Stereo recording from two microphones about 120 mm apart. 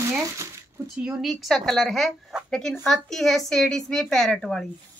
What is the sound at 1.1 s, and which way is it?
A woman's voice, centre (ahead or behind).